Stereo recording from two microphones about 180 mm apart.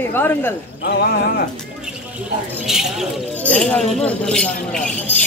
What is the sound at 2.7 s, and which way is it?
Speech, centre (ahead or behind).